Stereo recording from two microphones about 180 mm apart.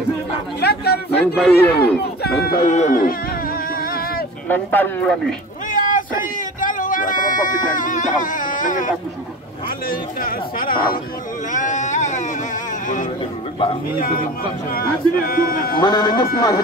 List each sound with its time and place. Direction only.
0.6 s chatter: 65° left (ahead or behind)
1.1 s speech: 5° left (ahead or behind)
1.5 s speech: 65° left (ahead or behind)
2.6 s speech: 40° left (ahead or behind)
4.5 s speech: 10° left (ahead or behind)
5.7 s a sound: 50° left (ahead or behind)
9.8 s speech: 50° left (ahead or behind)
11.5 s a sound: 40° left (ahead or behind)
13.9 s speech: 50° left (ahead or behind)
15.8 s speech: 25° left (ahead or behind)